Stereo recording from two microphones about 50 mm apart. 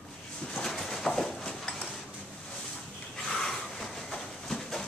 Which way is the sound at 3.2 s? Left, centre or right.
Centre.